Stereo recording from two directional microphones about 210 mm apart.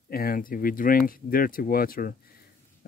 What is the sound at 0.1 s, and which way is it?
Speech, 45° left (ahead or behind).